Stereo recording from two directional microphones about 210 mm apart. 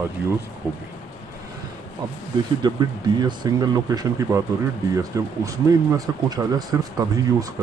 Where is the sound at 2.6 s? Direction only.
20° right (ahead or behind).